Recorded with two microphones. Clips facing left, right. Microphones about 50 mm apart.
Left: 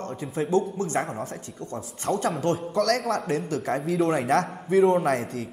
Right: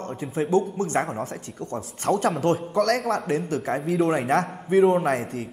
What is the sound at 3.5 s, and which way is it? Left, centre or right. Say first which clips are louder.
A man's voice: even; right.